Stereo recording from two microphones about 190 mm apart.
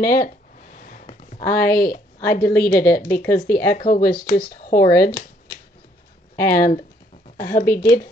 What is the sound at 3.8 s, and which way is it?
Speech, 50° left (ahead or behind).